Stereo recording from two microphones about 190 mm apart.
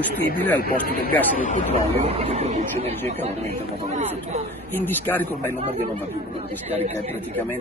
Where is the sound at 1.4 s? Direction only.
40° left (ahead or behind).